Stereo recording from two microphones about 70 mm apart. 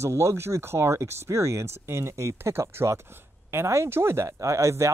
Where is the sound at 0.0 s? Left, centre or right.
Right.